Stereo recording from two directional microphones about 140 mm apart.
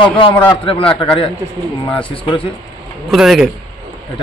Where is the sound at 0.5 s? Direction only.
40° left (ahead or behind).